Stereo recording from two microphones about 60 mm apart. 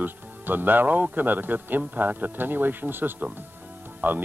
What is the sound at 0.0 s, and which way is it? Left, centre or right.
Speech, right.